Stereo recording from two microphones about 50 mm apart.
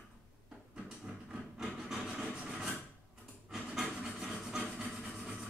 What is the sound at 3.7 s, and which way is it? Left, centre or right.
Wood, centre.